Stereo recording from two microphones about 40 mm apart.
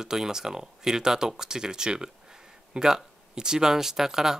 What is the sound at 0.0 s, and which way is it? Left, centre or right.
Speech, centre.